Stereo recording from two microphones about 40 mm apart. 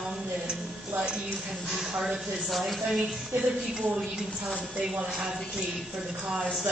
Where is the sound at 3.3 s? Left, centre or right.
Right.